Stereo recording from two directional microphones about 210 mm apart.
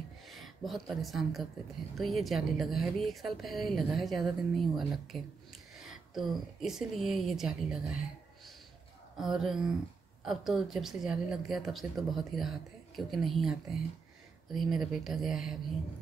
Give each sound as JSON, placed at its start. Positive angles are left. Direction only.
{"t": 0.3, "sound": "speech", "side_deg": 0}
{"t": 9.1, "sound": "speech", "side_deg": 0}